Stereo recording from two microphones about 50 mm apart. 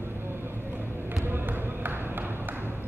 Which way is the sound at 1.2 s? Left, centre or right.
Right.